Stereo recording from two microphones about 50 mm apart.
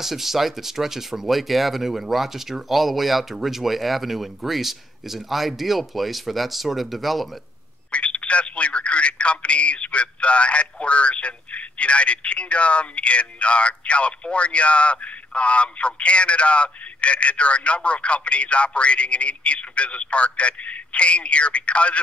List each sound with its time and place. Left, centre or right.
0.0 s speech: centre
7.9 s speech: left